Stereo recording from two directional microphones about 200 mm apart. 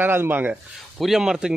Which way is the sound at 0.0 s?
10° right (ahead or behind).